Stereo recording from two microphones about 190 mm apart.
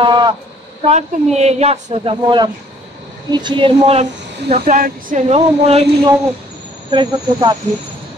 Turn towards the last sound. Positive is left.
turn(degrees=-25)  # may be behind; listen again after turning